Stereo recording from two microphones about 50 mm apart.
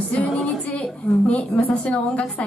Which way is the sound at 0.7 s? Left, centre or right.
Left.